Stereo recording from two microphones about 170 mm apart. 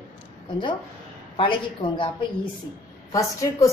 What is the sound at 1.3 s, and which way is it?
Speech, 30° left (ahead or behind).